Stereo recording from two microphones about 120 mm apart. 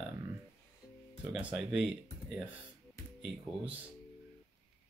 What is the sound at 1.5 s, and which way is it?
Speech, 5° right (ahead or behind).